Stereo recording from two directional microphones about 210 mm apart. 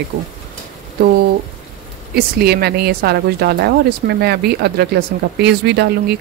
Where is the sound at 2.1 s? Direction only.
50° right (ahead or behind).